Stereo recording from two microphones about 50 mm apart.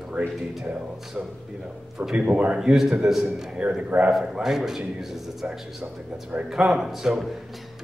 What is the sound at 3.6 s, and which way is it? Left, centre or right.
Speech, right.